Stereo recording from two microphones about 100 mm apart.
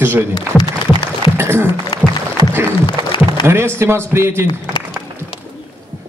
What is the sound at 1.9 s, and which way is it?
Music, 50° left (ahead or behind).